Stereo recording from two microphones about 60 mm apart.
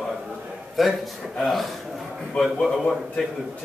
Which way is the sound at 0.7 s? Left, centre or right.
Centre.